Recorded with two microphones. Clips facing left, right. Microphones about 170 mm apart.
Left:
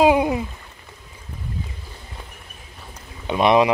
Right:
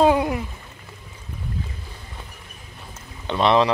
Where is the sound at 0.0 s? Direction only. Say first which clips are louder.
Left 2 dB; 15° left (ahead or behind).